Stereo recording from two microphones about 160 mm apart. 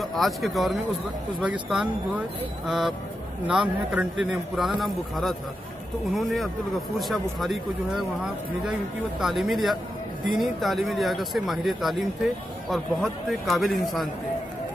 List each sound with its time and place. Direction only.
0.0 s speech: centre (ahead or behind)
9.2 s speech: centre (ahead or behind)